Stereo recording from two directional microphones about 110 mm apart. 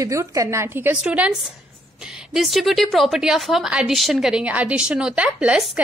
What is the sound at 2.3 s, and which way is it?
A woman's voice, centre (ahead or behind).